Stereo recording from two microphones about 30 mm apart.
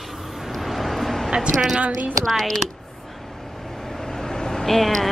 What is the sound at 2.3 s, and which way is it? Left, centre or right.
Speech, centre.